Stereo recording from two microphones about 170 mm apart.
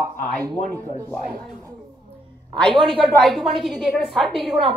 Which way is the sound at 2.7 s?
30° right (ahead or behind).